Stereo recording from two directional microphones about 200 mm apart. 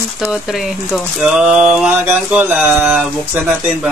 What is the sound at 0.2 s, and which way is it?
Speech, centre (ahead or behind).